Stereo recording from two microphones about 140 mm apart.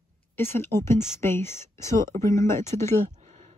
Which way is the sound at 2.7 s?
55° right (ahead or behind).